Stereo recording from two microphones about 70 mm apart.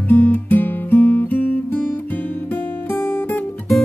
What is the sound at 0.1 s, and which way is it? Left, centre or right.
Music, left.